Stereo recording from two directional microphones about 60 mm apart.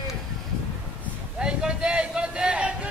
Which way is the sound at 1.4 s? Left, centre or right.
Centre.